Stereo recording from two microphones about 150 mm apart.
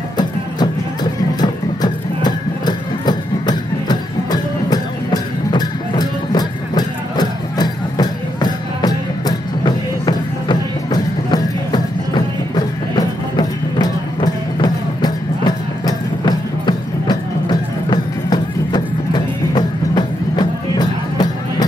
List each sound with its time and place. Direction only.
1.4 s music: 30° left (ahead or behind)
12.9 s music: 25° left (ahead or behind)